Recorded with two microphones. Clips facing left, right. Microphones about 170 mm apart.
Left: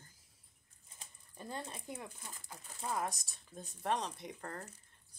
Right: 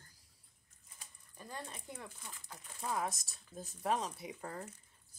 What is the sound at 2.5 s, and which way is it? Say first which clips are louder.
Speech: even; 5° left (ahead or behind).